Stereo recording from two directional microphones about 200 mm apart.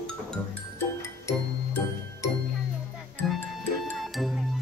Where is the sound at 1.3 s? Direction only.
15° left (ahead or behind).